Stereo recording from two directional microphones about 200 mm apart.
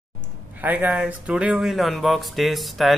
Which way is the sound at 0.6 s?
10° right (ahead or behind).